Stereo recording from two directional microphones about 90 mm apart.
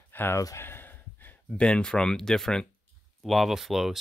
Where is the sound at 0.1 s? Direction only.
25° left (ahead or behind).